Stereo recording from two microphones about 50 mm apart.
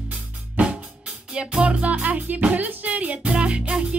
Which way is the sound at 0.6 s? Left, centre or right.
Right.